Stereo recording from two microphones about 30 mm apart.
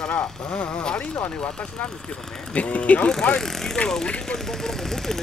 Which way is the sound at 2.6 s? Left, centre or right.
Left.